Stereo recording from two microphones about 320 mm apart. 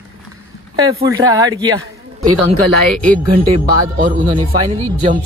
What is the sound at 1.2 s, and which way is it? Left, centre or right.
Speech, centre.